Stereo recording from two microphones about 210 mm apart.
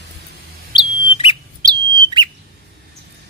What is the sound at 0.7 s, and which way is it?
Bird, 25° left (ahead or behind).